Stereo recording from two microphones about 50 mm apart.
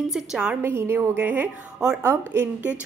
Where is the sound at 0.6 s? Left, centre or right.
Right.